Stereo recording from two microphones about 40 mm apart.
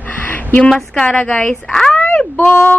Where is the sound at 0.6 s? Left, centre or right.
Left.